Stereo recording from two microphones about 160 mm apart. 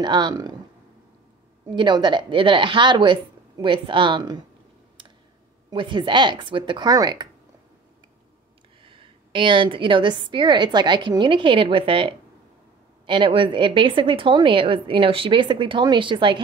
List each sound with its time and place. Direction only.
0.0 s speech: 25° right (ahead or behind)
1.7 s speech: 30° right (ahead or behind)
5.7 s speech: 30° right (ahead or behind)
8.8 s a woman's voice: 35° right (ahead or behind)